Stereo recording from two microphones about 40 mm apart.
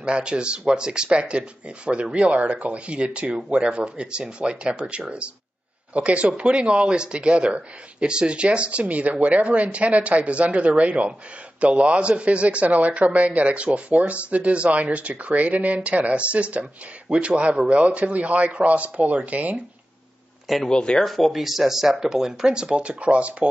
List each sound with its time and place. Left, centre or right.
0.0 s speech: right
20.5 s speech: centre; by 23.3 s right